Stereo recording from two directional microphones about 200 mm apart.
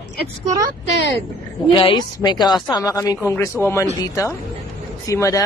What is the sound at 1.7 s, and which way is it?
A woman's voice, 25° left (ahead or behind).